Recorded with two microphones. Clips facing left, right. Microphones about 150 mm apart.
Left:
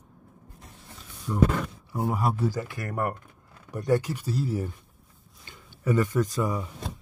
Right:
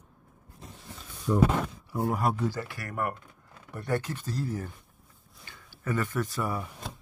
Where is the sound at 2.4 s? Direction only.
20° left (ahead or behind).